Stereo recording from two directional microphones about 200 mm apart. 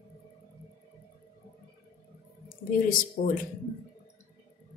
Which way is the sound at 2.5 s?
45° left (ahead or behind).